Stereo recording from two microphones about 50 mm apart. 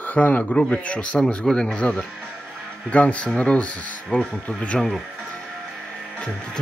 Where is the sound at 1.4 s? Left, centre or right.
Centre.